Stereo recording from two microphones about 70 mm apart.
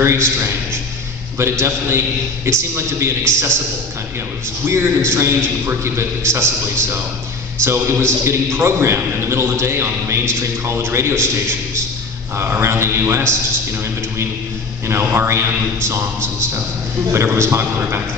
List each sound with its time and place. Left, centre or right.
0.0 s a man's voice: right
4.6 s a man's voice: right
12.4 s a man's voice: right
14.9 s a man's voice: right